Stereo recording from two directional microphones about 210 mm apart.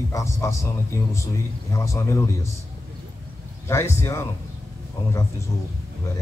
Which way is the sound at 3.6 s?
10° left (ahead or behind).